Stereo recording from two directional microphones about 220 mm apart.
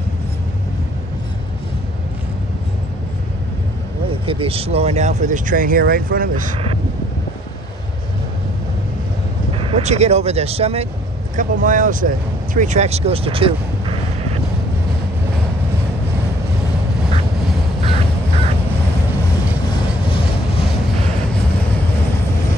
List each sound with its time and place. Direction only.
4.3 s speech: 25° right (ahead or behind)
9.6 s speech: 25° right (ahead or behind)